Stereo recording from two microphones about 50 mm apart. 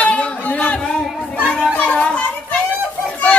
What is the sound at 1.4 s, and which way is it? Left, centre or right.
Children playing, left.